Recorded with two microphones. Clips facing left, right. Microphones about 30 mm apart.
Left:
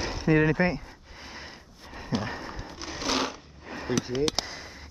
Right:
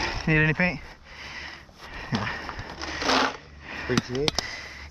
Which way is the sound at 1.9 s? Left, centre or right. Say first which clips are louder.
Right 2 dB; right.